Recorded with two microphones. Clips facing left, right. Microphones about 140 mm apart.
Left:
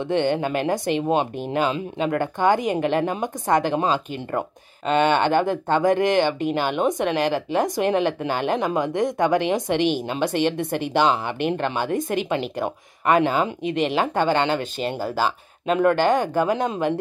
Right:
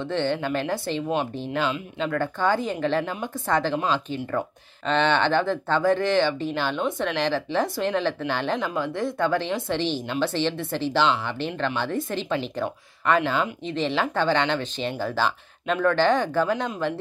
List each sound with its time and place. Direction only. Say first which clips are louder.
0.1 s a woman's voice: left 4 dB; 15° left (ahead or behind)
4.8 s a woman's voice: left 3 dB; 10° left (ahead or behind)